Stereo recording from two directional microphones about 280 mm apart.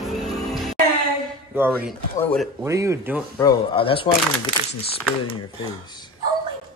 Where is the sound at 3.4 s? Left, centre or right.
Centre.